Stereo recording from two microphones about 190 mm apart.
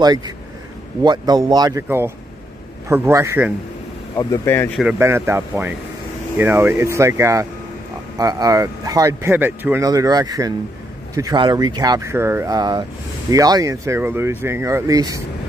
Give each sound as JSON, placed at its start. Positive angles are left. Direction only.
{"t": 0.0, "sound": "speech", "side_deg": -20}
{"t": 4.2, "sound": "speech", "side_deg": 15}
{"t": 4.7, "sound": "speech", "side_deg": -10}